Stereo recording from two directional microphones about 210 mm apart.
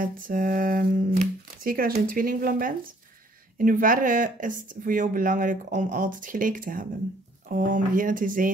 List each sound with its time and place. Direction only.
0.0 s speech: 40° right (ahead or behind)